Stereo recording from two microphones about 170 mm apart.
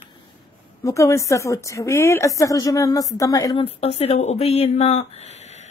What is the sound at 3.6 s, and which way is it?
Speech, 35° left (ahead or behind).